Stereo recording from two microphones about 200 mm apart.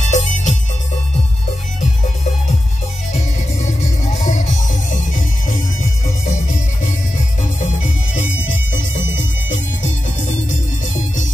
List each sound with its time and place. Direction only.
0.0 s music: 35° left (ahead or behind)
3.8 s music: 35° left (ahead or behind)
7.6 s music: 40° left (ahead or behind)